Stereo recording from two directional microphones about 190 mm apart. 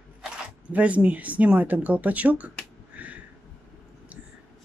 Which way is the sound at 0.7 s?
5° right (ahead or behind).